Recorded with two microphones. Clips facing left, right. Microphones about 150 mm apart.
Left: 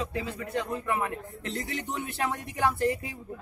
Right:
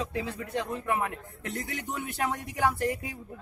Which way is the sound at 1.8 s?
15° left (ahead or behind).